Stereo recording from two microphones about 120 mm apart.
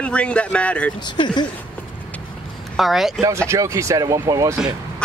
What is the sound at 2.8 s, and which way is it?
Speech, centre (ahead or behind).